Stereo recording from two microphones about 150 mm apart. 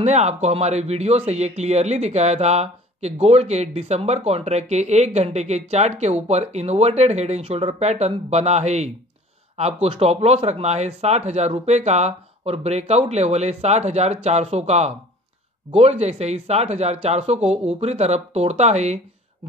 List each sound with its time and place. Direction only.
0.0 s speech: 50° right (ahead or behind)